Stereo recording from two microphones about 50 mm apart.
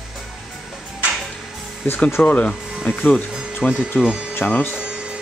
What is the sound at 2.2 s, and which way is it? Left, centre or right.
Speech, left.